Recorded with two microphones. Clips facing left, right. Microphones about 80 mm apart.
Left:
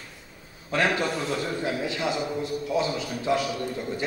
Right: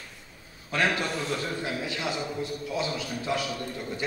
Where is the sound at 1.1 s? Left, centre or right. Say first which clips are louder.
Left 2 dB; centre.